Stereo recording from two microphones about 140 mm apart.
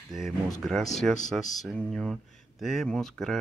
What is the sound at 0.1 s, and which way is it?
Speech, centre (ahead or behind).